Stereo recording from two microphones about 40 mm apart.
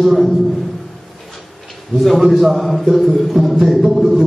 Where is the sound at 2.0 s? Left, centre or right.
Centre.